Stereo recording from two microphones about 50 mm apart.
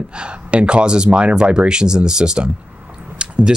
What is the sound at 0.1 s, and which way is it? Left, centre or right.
Speech, right.